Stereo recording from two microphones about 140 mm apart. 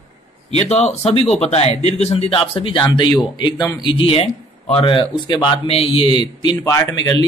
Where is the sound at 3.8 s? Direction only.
40° left (ahead or behind).